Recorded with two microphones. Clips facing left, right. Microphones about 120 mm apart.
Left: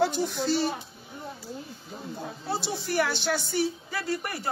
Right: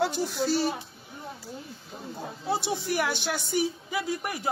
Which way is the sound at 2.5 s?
15° right (ahead or behind).